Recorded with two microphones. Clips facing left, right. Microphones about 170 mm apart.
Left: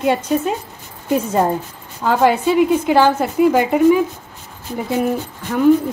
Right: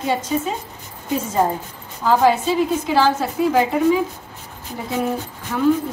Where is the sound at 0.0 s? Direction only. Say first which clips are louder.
Left 4 dB; 65° left (ahead or behind).